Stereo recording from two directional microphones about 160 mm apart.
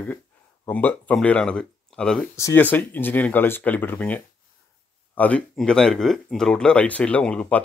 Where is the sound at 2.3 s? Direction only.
15° left (ahead or behind).